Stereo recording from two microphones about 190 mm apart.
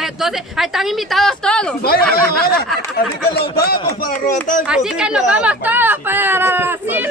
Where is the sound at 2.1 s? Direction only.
50° left (ahead or behind).